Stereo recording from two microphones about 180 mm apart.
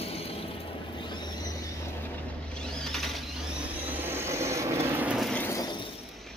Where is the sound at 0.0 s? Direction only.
35° left (ahead or behind).